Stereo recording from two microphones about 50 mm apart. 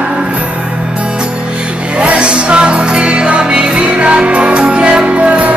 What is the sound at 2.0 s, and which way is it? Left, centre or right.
Music, right.